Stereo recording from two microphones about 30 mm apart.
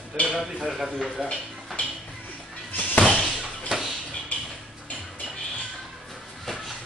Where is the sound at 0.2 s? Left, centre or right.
Left.